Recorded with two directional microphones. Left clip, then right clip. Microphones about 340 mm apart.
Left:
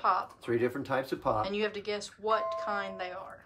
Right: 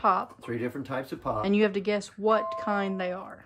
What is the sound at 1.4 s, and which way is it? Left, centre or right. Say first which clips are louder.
Speech: right 6 dB; centre.